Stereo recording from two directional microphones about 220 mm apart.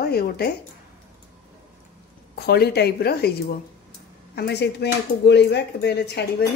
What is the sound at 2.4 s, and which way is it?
Speech, 45° left (ahead or behind).